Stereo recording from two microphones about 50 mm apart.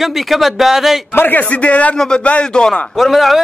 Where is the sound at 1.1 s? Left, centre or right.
Left.